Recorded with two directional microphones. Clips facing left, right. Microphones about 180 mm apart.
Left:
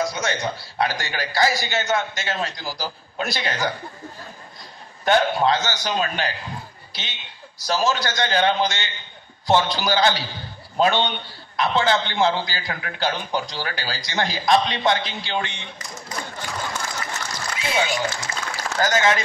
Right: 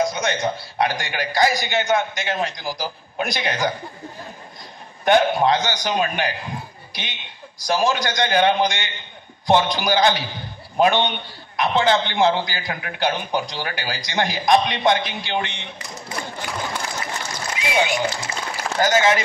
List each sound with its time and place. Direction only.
0.0 s a man's voice: 20° right (ahead or behind)
5.0 s a man's voice: 15° right (ahead or behind)
15.8 s speech: 40° left (ahead or behind)
16.3 s speech: 15° right (ahead or behind)